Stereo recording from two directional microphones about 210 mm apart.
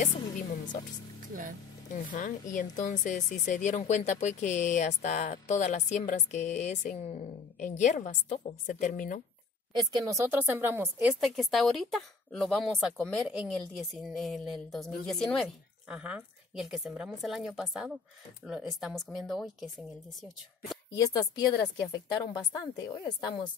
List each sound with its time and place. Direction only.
2.1 s speech: 35° left (ahead or behind)
9.7 s a woman's voice: 20° right (ahead or behind); by 20.8 s centre (ahead or behind)
20.9 s a woman's voice: 15° left (ahead or behind)